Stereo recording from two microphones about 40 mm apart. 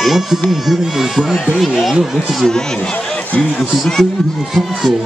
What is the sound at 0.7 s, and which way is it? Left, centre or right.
Speech, centre.